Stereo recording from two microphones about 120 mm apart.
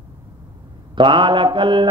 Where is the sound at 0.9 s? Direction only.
40° right (ahead or behind).